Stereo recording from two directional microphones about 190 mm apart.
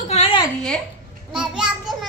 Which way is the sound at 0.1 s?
35° left (ahead or behind).